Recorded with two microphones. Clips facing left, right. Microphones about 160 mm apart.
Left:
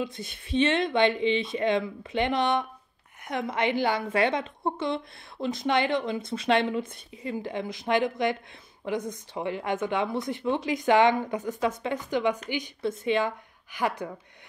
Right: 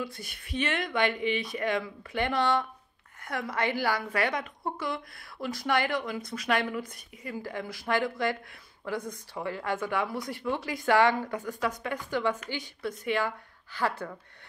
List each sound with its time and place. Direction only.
0.0 s a woman's voice: 20° left (ahead or behind)